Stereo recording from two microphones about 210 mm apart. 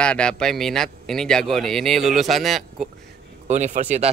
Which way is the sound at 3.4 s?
35° right (ahead or behind).